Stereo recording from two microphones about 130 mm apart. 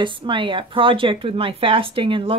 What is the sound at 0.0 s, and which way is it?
A woman's voice, 40° right (ahead or behind).